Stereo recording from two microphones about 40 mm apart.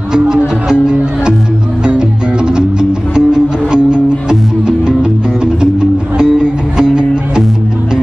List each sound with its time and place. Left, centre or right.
0.3 s speech: centre
1.9 s music: right
6.3 s music: centre